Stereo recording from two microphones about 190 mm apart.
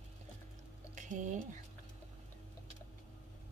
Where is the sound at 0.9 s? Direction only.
40° right (ahead or behind).